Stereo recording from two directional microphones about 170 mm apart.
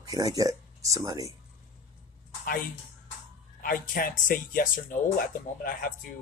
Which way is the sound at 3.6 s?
55° left (ahead or behind).